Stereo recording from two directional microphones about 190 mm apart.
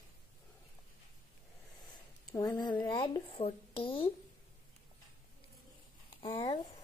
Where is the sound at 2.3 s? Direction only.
15° left (ahead or behind).